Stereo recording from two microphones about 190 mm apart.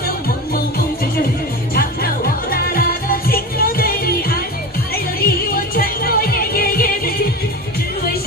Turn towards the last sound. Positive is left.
turn(degrees=50)  # may be behind; listen again after turning